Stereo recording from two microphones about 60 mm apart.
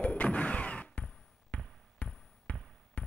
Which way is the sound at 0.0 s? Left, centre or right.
Left.